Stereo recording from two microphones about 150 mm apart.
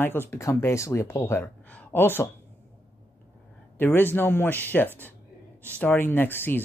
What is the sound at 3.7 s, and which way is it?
Speech, 15° left (ahead or behind).